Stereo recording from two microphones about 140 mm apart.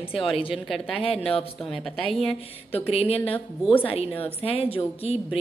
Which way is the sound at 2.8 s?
45° left (ahead or behind).